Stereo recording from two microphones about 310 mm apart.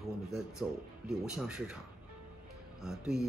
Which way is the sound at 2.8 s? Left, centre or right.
Centre.